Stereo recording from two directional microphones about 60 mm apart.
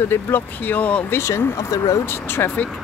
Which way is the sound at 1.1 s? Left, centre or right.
Left.